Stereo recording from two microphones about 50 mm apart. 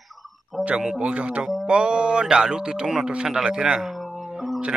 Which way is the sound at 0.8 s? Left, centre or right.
Centre.